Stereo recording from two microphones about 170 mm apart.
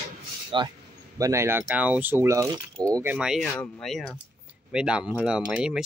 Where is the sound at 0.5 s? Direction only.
30° right (ahead or behind).